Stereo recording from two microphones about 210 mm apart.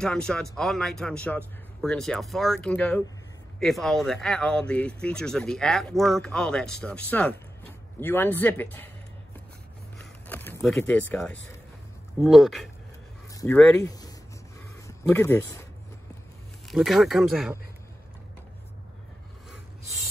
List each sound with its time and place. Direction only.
0.0 s a man's voice: 5° left (ahead or behind)
9.9 s a sound: 10° left (ahead or behind)
12.2 s speech: centre (ahead or behind)
13.3 s a sound: 15° left (ahead or behind)
13.6 s a man's voice: 10° left (ahead or behind)
16.6 s speech: centre (ahead or behind)